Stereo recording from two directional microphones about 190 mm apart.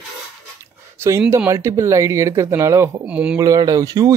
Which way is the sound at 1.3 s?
15° right (ahead or behind).